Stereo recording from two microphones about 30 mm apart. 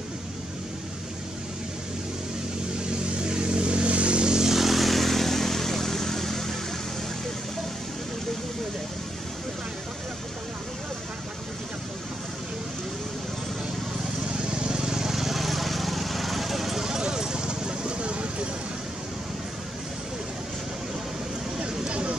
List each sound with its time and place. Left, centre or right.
3.2 s vehicle: right
4.3 s vehicle: right
4.6 s vehicle: centre
14.3 s vehicle: right
15.1 s vehicle: centre
17.0 s vehicle: right
21.5 s a sound: right